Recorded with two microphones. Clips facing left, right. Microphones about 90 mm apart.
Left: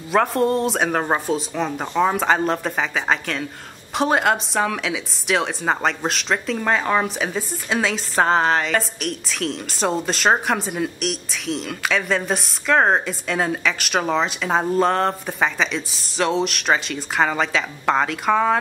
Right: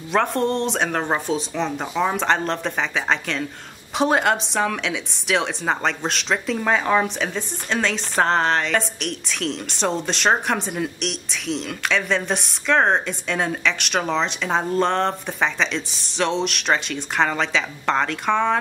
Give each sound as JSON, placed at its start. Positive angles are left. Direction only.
{"t": 0.1, "sound": "a woman's voice", "side_deg": 5}